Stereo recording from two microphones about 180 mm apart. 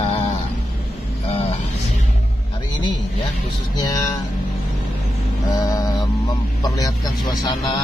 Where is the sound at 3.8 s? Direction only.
20° left (ahead or behind).